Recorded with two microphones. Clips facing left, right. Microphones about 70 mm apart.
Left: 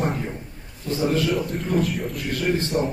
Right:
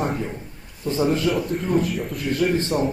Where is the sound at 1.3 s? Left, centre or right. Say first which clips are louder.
Right 2 dB; centre.